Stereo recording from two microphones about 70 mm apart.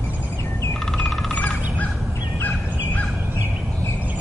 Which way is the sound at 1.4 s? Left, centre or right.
Left.